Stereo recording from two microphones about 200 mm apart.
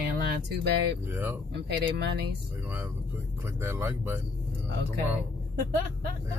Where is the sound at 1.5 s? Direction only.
55° right (ahead or behind).